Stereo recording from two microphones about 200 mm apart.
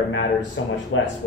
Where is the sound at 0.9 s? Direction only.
75° left (ahead or behind).